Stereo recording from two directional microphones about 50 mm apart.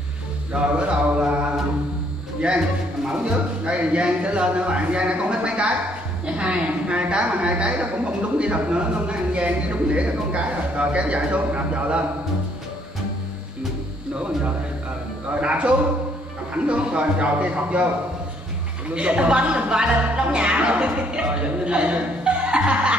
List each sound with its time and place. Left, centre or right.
0.5 s mantra: right
2.4 s a woman's voice: centre
15.4 s a man's voice: right
18.9 s a woman's voice: right